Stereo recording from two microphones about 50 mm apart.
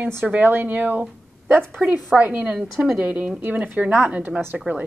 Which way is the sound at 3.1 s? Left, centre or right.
Right.